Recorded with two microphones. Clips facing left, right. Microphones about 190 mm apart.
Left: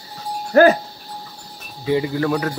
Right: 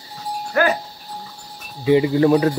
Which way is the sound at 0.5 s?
40° left (ahead or behind).